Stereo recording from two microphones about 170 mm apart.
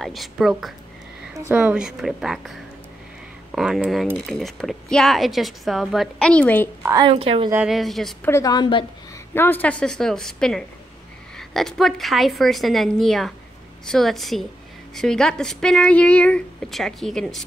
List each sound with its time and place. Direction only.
0.0 s speech: centre (ahead or behind)
3.5 s speech: centre (ahead or behind)
6.8 s a woman's voice: 20° right (ahead or behind)
7.1 s a woman's voice: 35° right (ahead or behind)
7.5 s speech: centre (ahead or behind)
8.3 s a woman's voice: 20° left (ahead or behind)
9.3 s speech: 10° left (ahead or behind)